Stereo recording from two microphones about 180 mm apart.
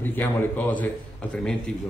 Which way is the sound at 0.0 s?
10° left (ahead or behind).